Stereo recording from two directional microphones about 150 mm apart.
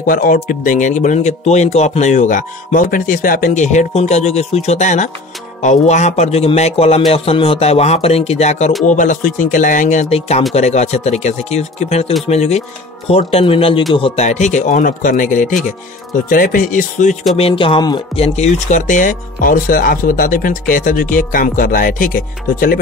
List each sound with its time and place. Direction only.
0.0 s speech: 65° left (ahead or behind); by 12.6 s 45° left (ahead or behind)
13.3 s music: 40° left (ahead or behind)
13.9 s speech: 40° left (ahead or behind); by 15.6 s 60° left (ahead or behind)
16.3 s speech: 70° left (ahead or behind)
17.4 s music: 40° left (ahead or behind)
18.2 s speech: 50° left (ahead or behind); by 22.8 s 65° left (ahead or behind)